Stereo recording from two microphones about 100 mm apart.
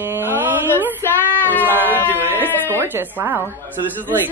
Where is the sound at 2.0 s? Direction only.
20° right (ahead or behind).